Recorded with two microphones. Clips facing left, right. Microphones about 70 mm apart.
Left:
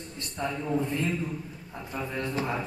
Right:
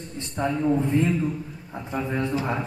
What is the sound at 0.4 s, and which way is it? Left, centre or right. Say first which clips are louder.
A man's voice: right 6 dB; right.